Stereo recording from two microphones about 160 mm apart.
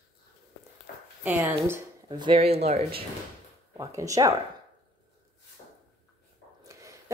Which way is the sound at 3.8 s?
20° right (ahead or behind).